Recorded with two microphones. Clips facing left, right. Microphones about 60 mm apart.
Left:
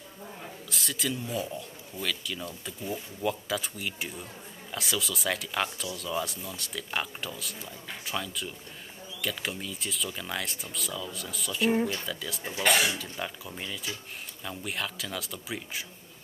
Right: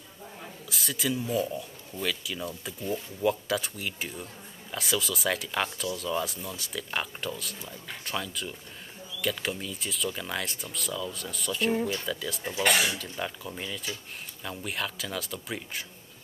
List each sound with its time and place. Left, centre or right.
0.4 s speech: centre